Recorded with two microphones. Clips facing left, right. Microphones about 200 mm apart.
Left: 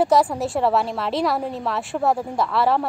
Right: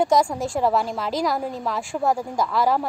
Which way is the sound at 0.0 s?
5° left (ahead or behind).